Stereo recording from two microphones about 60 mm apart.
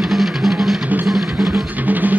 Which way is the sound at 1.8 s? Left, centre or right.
Right.